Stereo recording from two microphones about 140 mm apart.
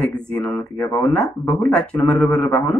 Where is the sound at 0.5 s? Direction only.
20° left (ahead or behind).